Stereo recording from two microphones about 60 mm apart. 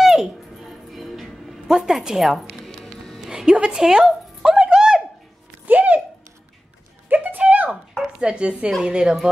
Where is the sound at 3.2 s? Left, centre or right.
Centre.